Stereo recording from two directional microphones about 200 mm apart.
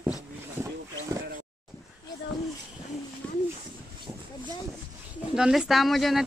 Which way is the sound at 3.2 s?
5° left (ahead or behind).